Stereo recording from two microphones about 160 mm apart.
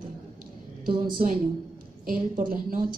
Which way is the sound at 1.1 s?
60° right (ahead or behind).